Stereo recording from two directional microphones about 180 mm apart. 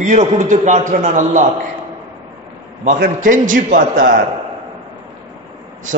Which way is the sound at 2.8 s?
45° right (ahead or behind).